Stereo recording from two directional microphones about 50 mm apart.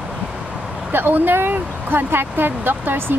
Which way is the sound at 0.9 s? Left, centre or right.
Right.